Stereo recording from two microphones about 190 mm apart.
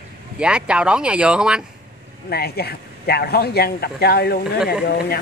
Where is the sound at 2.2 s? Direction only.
55° left (ahead or behind).